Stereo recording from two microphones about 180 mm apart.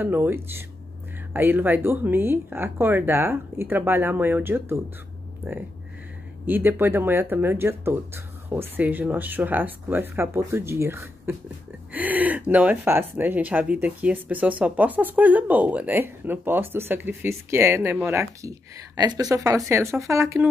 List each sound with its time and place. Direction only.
0.0 s speech: 10° right (ahead or behind)